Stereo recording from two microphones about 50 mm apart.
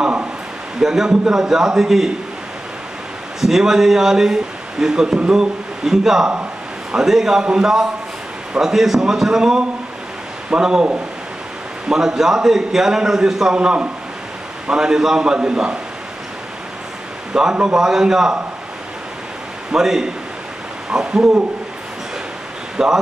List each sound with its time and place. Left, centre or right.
0.7 s speech: centre
3.3 s speech: centre
11.9 s speech: centre
17.3 s speech: centre
19.7 s speech: centre
22.8 s speech: centre